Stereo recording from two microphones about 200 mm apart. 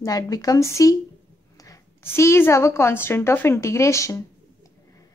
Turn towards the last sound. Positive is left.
turn(degrees=15)  # may be behind; listen again after turning